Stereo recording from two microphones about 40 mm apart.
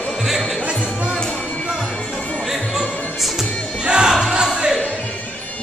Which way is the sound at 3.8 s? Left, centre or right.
Right.